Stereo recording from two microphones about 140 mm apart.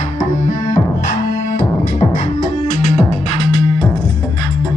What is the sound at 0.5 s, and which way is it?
Music, 65° left (ahead or behind).